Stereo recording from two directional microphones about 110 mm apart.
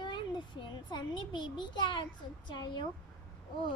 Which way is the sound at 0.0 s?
45° left (ahead or behind).